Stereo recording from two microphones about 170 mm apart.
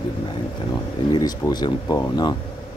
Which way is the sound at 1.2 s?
25° left (ahead or behind).